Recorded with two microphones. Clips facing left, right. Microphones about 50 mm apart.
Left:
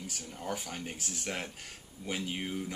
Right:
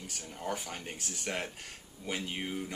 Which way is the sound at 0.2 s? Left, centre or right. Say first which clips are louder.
Right 2 dB; centre.